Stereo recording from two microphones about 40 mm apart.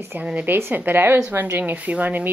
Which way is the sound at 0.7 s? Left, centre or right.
Right.